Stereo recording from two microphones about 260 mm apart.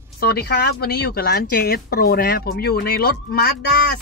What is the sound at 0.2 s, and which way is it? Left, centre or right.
Speech, left.